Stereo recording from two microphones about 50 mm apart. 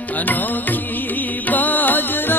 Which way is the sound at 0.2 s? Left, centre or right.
Left.